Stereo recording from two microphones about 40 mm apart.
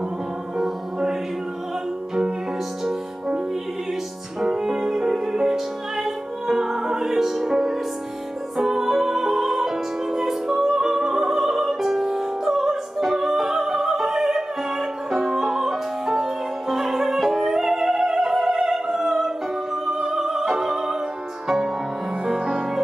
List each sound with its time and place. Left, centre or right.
0.6 s music: centre
2.8 s music: centre
4.4 s music: centre
20.4 s opera: centre
20.7 s music: centre